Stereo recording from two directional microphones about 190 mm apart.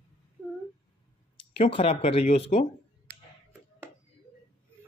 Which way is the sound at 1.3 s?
30° left (ahead or behind).